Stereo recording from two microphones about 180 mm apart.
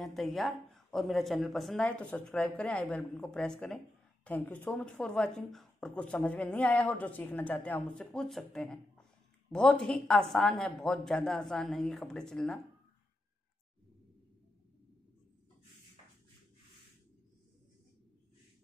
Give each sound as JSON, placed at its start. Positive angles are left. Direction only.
{"t": 0.0, "sound": "speech", "side_deg": 0}